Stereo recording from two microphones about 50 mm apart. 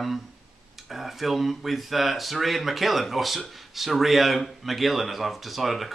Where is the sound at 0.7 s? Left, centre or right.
Centre.